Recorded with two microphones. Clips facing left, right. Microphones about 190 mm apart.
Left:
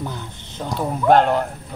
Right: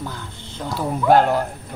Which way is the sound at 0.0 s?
20° left (ahead or behind).